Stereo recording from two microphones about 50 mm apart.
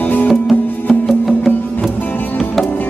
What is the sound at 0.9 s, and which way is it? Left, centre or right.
Music, centre.